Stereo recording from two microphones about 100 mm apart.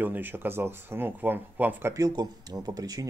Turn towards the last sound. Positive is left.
turn(degrees=-40)  # may be behind; listen again after turning